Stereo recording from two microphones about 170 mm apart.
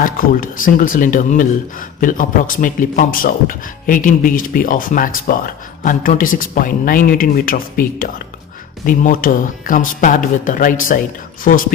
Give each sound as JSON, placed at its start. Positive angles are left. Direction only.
{"t": 0.0, "sound": "a man's voice", "side_deg": 55}